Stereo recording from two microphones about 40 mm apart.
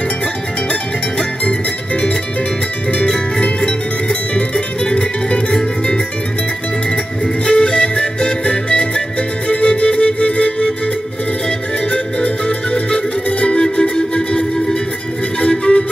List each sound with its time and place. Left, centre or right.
3.3 s music: left
7.5 s music: left
11.9 s music: left